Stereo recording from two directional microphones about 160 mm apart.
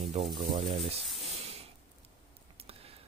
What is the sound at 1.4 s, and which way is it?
Spray, 40° right (ahead or behind).